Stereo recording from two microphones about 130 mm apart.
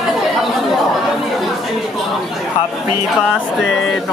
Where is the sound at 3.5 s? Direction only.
Centre (ahead or behind).